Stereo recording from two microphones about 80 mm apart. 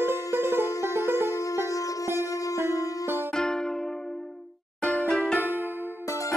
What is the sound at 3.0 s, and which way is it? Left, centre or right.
Music, right.